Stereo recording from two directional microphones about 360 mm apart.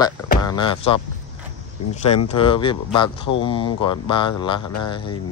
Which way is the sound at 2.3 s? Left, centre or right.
Centre.